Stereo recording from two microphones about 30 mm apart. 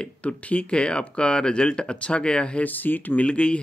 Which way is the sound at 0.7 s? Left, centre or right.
Left.